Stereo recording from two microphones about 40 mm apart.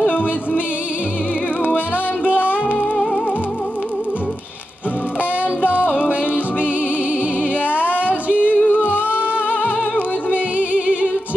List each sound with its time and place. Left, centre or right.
2.2 s music: right
5.6 s music: left
7.7 s a sound: right
8.3 s music: left
10.3 s music: right